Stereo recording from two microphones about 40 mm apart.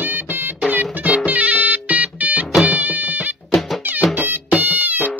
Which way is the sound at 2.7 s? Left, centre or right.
Right.